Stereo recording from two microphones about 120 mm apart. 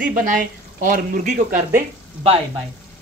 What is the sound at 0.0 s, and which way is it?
Speech, 90° right.